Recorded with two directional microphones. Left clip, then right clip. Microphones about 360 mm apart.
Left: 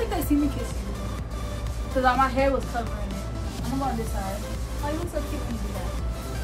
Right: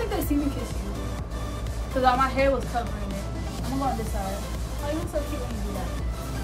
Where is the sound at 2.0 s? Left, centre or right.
Centre.